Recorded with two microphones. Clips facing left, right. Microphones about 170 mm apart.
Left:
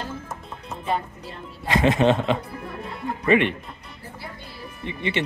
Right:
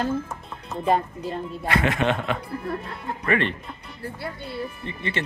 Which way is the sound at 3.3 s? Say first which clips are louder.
Left 4 dB; 15° left (ahead or behind).